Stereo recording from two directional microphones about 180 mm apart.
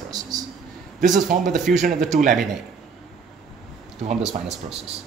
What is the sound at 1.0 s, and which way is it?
Speech, 45° right (ahead or behind).